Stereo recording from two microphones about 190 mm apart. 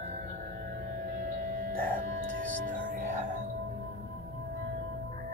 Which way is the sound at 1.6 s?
50° right (ahead or behind).